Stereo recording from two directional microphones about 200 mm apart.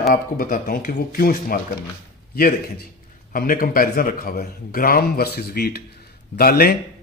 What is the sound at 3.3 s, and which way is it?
A man's voice, 45° left (ahead or behind).